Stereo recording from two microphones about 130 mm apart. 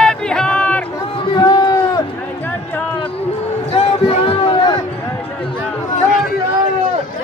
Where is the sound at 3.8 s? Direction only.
40° left (ahead or behind).